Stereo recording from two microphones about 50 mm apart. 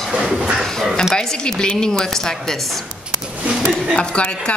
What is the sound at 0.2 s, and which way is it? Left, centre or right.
Speech, centre.